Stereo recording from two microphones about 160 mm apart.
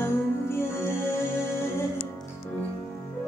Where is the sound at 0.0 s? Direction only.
15° left (ahead or behind).